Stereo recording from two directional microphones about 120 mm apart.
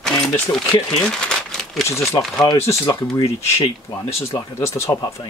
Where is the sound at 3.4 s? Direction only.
25° left (ahead or behind).